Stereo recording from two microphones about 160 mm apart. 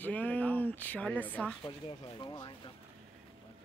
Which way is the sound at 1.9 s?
30° left (ahead or behind).